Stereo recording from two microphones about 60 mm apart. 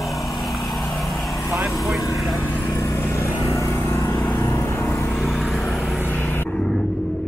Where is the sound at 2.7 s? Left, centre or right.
Left.